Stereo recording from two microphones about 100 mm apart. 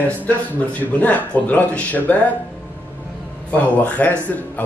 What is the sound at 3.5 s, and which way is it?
Speech, 15° left (ahead or behind).